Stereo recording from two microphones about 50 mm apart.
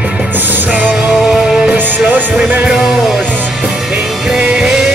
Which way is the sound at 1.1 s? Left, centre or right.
Centre.